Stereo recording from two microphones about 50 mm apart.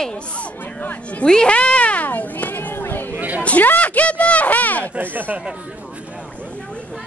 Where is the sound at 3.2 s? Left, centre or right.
Right.